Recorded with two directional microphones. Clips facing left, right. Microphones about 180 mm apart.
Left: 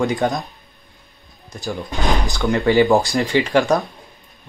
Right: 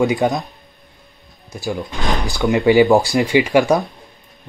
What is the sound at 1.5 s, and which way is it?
Speech, centre (ahead or behind).